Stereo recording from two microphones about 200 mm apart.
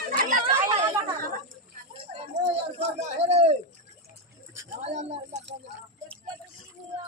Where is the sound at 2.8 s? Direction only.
30° right (ahead or behind).